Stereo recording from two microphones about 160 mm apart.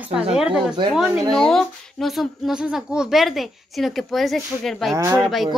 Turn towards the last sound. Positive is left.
turn(degrees=0)  # may be behind; listen again after turning